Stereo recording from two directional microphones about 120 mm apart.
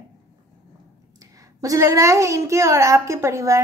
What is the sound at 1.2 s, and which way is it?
A child's voice, 30° right (ahead or behind).